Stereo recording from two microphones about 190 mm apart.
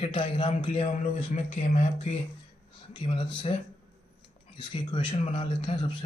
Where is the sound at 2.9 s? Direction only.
25° left (ahead or behind).